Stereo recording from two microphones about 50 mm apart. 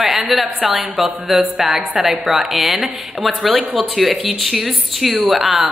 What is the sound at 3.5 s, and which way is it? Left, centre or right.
Speech, right.